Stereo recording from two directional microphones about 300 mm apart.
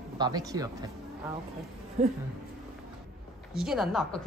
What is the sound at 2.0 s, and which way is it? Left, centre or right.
Speech, right.